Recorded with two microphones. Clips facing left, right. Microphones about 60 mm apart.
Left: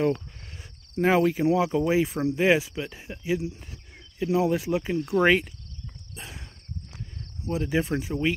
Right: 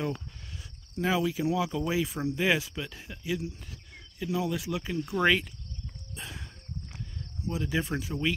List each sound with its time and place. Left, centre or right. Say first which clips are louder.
0.0 s cricket: left 8 dB; left
0.9 s speech: left 7 dB; left
6.1 s a sound: even; centre
7.4 s speech: left 5 dB; left